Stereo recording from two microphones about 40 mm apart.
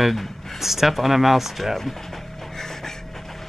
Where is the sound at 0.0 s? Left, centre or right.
Centre.